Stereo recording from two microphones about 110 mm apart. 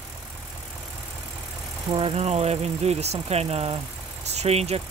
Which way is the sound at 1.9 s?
55° right (ahead or behind).